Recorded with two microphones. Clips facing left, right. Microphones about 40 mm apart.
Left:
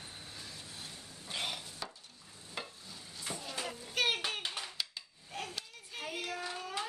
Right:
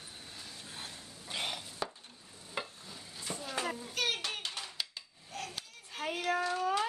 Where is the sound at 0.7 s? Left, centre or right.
Right.